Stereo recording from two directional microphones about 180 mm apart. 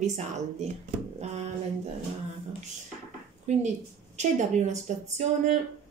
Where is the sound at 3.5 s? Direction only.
40° right (ahead or behind).